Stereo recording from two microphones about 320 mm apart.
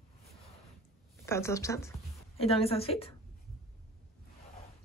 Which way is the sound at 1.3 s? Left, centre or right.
Centre.